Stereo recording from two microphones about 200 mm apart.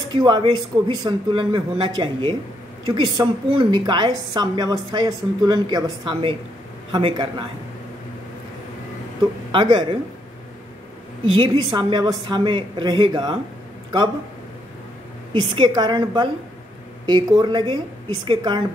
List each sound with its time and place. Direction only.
0.1 s a woman's voice: 20° right (ahead or behind)
2.9 s a woman's voice: 20° right (ahead or behind)
9.5 s a woman's voice: 25° right (ahead or behind)
11.3 s a woman's voice: 20° right (ahead or behind)
15.3 s a woman's voice: 20° right (ahead or behind)